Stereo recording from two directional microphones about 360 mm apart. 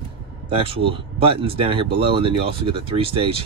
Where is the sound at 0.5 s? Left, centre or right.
Centre.